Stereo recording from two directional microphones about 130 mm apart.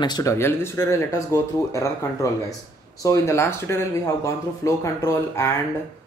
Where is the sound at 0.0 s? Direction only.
30° left (ahead or behind).